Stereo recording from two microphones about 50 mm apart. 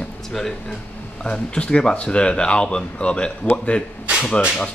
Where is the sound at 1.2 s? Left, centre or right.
Left.